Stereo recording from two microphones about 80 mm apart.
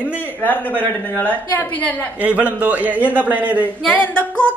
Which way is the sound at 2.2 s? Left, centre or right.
Centre.